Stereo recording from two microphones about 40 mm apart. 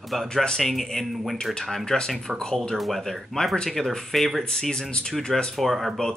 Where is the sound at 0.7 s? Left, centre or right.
Centre.